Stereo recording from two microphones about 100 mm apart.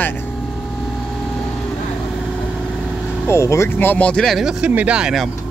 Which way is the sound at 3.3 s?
30° left (ahead or behind).